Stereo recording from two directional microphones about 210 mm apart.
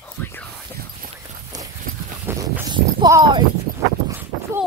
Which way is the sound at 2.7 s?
20° right (ahead or behind).